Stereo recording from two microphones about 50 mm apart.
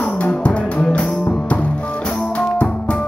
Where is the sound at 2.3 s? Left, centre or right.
Left.